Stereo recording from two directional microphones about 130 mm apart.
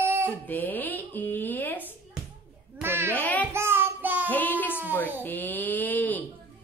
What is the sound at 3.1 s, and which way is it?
Child singing, 10° left (ahead or behind).